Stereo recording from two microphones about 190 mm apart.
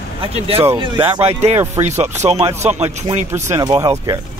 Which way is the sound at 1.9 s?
35° right (ahead or behind).